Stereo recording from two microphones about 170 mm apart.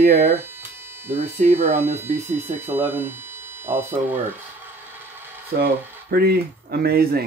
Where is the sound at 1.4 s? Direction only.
45° right (ahead or behind).